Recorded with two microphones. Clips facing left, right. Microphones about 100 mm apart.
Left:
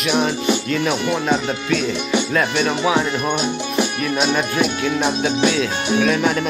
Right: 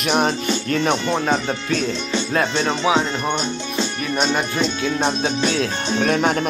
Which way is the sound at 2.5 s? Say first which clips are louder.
Even; 20° right (ahead or behind).